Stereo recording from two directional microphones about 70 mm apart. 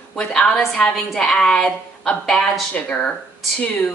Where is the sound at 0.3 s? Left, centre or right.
Centre.